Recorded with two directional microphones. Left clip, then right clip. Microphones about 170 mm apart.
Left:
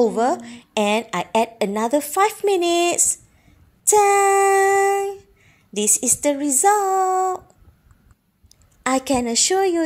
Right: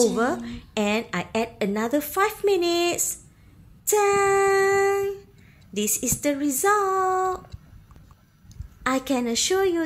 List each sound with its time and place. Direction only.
0.0 s a woman's voice: 20° left (ahead or behind)
8.8 s a woman's voice: 25° left (ahead or behind)